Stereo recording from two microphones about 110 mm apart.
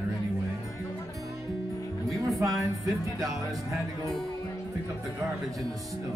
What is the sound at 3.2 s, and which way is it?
Music, 30° right (ahead or behind).